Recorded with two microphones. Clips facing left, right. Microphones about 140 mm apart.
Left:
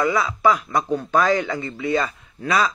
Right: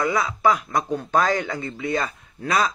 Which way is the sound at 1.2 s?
45° right (ahead or behind).